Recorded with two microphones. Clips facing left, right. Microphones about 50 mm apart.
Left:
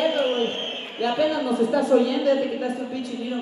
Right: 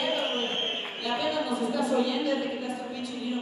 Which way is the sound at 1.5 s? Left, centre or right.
Left.